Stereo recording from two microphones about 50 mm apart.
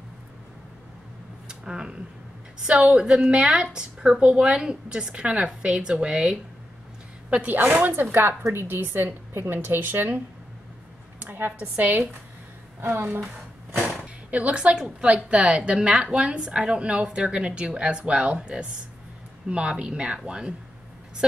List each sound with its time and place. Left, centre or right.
1.5 s a sound: centre
2.6 s a woman's voice: centre
7.2 s a woman's voice: right
7.8 s a woman's voice: right
11.2 s a woman's voice: right
11.5 s speech: right
12.8 s a woman's voice: right
13.7 s a woman's voice: right